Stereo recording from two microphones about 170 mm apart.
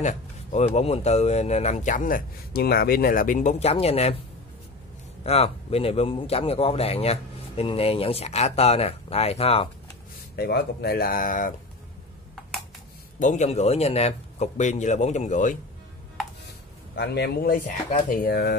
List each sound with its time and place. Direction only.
0.0 s speech: 40° left (ahead or behind)
5.2 s speech: 35° left (ahead or behind)
10.3 s speech: 70° left (ahead or behind); by 11.5 s 55° left (ahead or behind)
13.2 s speech: 45° left (ahead or behind)
16.9 s speech: 75° left (ahead or behind)